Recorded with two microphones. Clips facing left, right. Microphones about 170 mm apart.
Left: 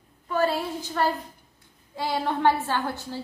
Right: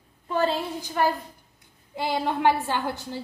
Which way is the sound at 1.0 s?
15° right (ahead or behind).